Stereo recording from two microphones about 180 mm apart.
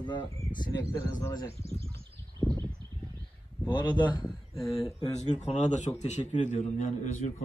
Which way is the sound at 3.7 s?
25° left (ahead or behind).